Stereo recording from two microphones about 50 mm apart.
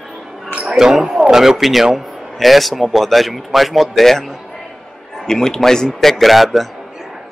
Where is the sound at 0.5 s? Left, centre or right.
Right.